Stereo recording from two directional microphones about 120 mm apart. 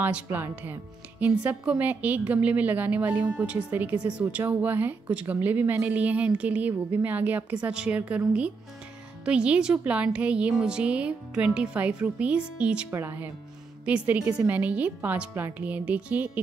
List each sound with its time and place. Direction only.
0.0 s a woman's voice: 15° right (ahead or behind)